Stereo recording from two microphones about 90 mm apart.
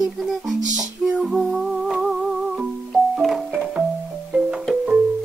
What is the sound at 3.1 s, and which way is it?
Keyboard, 5° right (ahead or behind).